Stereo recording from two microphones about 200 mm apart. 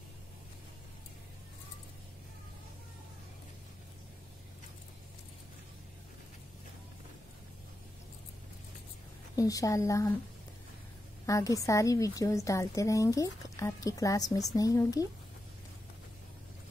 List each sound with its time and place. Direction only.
9.4 s a woman's voice: 15° left (ahead or behind)
11.2 s a woman's voice: 15° left (ahead or behind)